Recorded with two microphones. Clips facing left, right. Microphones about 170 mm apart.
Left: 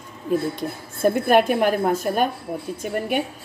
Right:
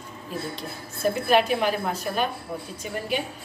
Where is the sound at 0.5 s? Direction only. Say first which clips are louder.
Left 6 dB; 50° left (ahead or behind).